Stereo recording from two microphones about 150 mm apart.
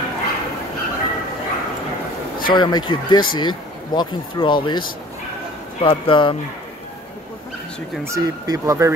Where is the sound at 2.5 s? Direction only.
30° left (ahead or behind).